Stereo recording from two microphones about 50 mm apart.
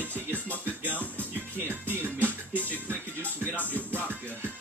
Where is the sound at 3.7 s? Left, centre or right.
Right.